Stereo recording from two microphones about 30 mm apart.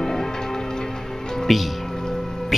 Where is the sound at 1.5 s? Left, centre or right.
Centre.